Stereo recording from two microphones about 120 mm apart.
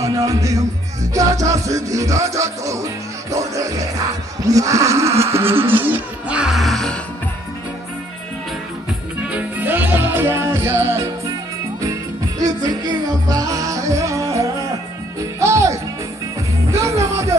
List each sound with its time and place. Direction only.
0.0 s music: 30° right (ahead or behind); by 7.0 s 5° left (ahead or behind)
9.2 s music: 10° right (ahead or behind)